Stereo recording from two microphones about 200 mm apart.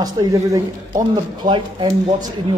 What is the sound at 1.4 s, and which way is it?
Speech, 20° right (ahead or behind).